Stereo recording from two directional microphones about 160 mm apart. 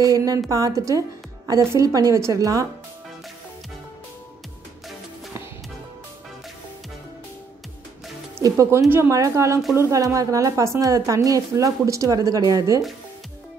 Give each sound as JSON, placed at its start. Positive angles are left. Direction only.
{"t": 0.0, "sound": "a woman's voice", "side_deg": -20}
{"t": 8.4, "sound": "a woman's voice", "side_deg": -20}